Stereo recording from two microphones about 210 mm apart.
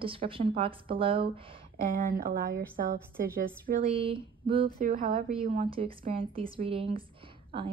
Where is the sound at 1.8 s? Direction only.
40° right (ahead or behind).